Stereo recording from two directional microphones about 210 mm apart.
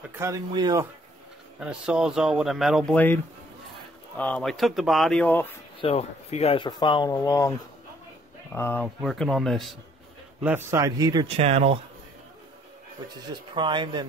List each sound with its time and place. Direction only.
0.1 s a man's voice: 15° right (ahead or behind)
1.6 s speech: 5° right (ahead or behind)
4.2 s speech: 5° left (ahead or behind)
5.8 s speech: 30° left (ahead or behind)
8.5 s speech: 10° left (ahead or behind)
10.4 s a man's voice: 10° right (ahead or behind)
11.2 s speech: 30° right (ahead or behind)
13.3 s speech: 20° right (ahead or behind)